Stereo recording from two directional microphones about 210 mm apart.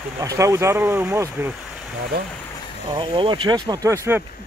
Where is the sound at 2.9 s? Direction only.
25° right (ahead or behind).